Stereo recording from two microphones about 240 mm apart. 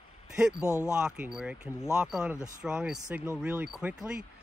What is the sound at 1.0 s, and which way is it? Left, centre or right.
Speech, centre.